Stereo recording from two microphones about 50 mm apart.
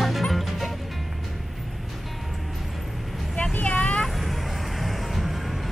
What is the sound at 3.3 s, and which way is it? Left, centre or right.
Vehicle, left.